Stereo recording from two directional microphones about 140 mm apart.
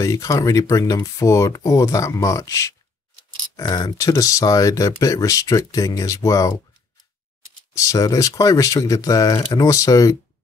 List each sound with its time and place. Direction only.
0.0 s speech: 25° left (ahead or behind)
7.7 s speech: 25° left (ahead or behind)